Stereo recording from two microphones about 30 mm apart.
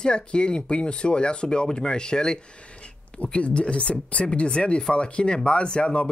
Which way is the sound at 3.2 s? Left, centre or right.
Left.